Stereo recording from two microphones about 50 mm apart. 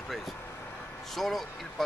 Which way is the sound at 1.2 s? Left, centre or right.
Centre.